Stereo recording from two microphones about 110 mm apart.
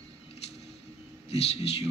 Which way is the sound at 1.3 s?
70° left (ahead or behind).